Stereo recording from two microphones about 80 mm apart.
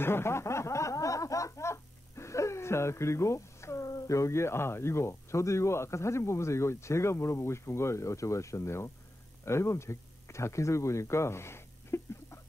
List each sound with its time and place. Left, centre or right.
0.0 s snicker: left
9.4 s speech: left